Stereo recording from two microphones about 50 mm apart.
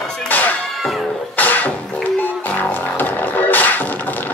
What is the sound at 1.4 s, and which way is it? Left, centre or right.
Music, left.